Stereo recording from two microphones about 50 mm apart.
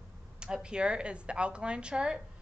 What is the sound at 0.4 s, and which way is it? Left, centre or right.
A woman's voice, centre.